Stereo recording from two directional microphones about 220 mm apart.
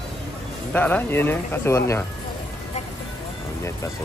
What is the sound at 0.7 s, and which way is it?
Speech, 10° left (ahead or behind).